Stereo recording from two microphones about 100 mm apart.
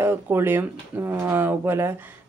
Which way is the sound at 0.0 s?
20° right (ahead or behind).